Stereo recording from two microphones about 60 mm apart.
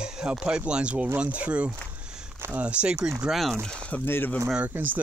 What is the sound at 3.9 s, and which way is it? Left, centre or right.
Speech, left.